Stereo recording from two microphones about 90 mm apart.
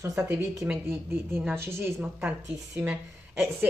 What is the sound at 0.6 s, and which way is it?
Mantra, 20° right (ahead or behind).